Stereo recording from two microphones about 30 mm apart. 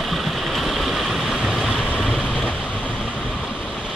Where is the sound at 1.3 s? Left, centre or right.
Centre.